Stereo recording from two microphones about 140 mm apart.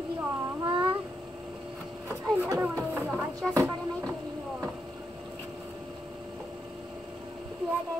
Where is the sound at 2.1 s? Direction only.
20° right (ahead or behind).